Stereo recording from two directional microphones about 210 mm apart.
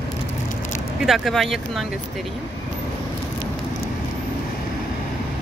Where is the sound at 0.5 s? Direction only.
35° left (ahead or behind).